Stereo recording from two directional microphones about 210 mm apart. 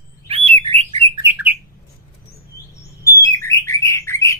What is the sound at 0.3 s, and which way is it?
Bird, 25° right (ahead or behind).